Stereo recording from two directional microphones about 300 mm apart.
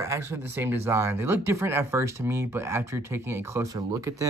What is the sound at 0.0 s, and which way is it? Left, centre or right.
Speech, centre.